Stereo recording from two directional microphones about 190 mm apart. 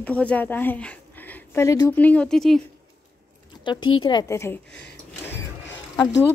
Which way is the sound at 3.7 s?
25° left (ahead or behind).